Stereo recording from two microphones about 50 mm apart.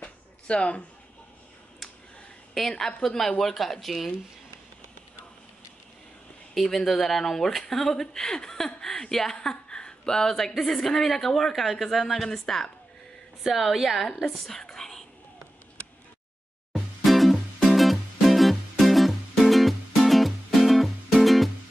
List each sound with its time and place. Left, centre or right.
0.0 s a sound: left
2.6 s speech: centre
6.5 s speech: centre
14.2 s whispering: centre
16.7 s music: centre